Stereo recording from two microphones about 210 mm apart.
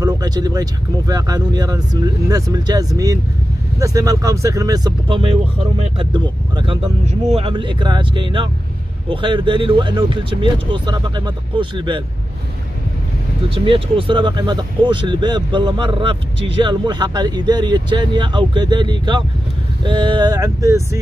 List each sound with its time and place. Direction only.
0.0 s speech: 20° right (ahead or behind)
13.7 s speech: 25° right (ahead or behind)